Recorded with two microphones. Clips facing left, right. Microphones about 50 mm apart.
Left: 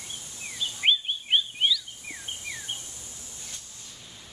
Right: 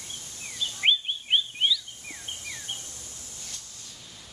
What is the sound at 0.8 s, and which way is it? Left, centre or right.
Chirp, centre.